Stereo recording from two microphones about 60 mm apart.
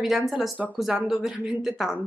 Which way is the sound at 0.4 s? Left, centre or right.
Centre.